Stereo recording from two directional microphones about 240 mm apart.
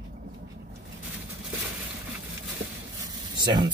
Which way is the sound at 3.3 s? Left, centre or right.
Centre.